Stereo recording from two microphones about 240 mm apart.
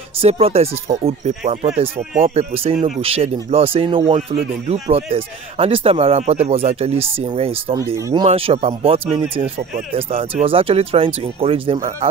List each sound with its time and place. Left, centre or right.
0.2 s speech: right
10.4 s speech: right